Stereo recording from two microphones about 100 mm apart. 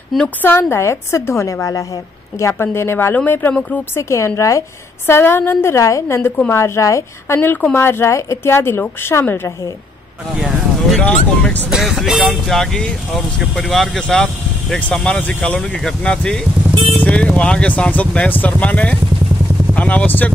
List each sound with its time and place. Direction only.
0.4 s a woman's voice: 20° left (ahead or behind)
4.4 s a woman's voice: 30° left (ahead or behind)
10.3 s speech: 10° right (ahead or behind)
11.0 s speech: 15° left (ahead or behind)
11.7 s speech: centre (ahead or behind)
16.7 s speech: 80° right
17.0 s speech: 10° left (ahead or behind)